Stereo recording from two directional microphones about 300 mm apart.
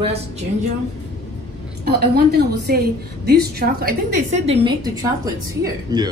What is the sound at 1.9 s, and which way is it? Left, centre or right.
A woman's voice, right.